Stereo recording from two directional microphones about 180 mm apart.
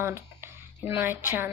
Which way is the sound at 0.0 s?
15° right (ahead or behind).